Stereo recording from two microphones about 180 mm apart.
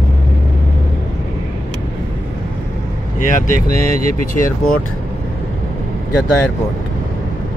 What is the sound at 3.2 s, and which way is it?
Speech, 45° left (ahead or behind).